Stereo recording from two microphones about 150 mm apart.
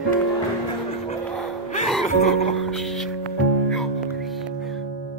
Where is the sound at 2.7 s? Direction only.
Centre (ahead or behind).